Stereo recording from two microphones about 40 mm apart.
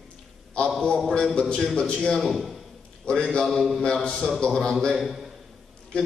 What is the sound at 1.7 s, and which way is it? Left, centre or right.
Speech, left.